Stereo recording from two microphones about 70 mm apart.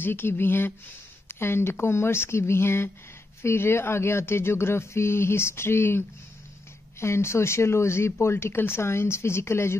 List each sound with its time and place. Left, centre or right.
0.0 s speech: left